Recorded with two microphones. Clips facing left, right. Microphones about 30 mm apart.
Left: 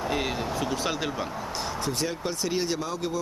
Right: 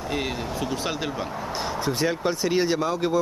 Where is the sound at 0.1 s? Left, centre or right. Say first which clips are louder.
Right 4 dB; centre.